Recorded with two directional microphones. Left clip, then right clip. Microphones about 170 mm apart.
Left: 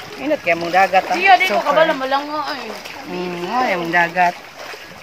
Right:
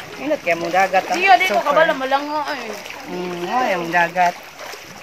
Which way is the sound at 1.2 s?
45° right (ahead or behind).